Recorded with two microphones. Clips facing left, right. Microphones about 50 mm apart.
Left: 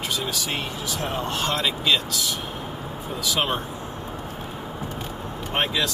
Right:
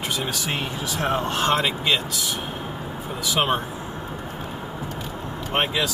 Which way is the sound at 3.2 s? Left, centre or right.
Centre.